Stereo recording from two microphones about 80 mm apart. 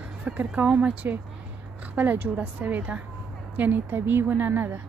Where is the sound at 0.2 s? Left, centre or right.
Right.